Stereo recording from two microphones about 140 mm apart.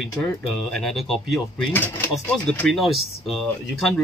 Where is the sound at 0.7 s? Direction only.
Centre (ahead or behind).